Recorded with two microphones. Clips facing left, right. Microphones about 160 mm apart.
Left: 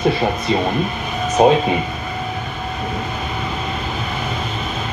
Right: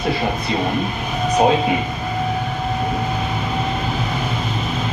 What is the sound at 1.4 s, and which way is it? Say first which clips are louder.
Speech: left 4 dB; 25° left (ahead or behind).